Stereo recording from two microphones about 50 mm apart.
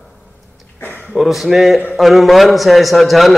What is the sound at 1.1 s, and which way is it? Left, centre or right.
A man's voice, centre.